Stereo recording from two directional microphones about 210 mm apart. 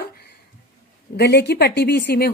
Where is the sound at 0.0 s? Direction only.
45° left (ahead or behind).